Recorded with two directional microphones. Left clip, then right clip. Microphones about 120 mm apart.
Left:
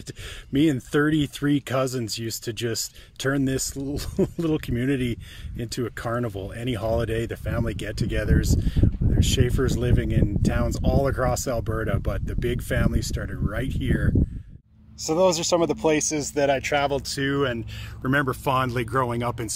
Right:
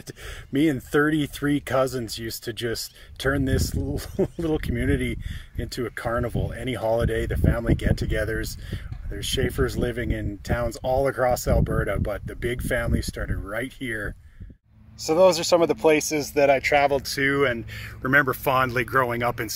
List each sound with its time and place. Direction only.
0.5 s speech: 20° left (ahead or behind)
15.0 s speech: 5° left (ahead or behind); by 19.5 s 25° left (ahead or behind)